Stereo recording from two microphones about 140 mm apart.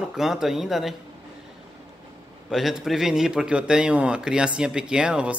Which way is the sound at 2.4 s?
Centre (ahead or behind).